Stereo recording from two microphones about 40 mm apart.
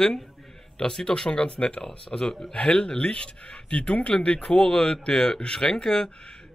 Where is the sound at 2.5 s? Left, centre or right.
Left.